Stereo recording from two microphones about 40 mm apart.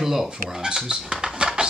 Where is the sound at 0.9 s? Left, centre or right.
Centre.